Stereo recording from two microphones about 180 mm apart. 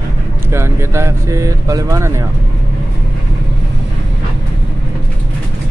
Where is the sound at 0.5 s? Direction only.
15° right (ahead or behind).